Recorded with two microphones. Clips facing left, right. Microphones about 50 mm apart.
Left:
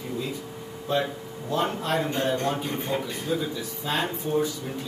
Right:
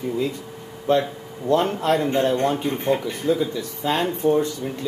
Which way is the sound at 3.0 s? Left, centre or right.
Right.